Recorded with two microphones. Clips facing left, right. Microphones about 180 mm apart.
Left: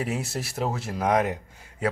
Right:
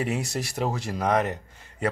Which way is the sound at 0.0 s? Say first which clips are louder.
Right 1 dB; centre (ahead or behind).